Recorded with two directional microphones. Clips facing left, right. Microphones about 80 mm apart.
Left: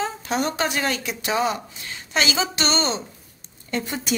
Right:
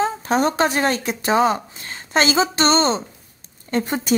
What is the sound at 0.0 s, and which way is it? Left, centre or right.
A woman's voice, right.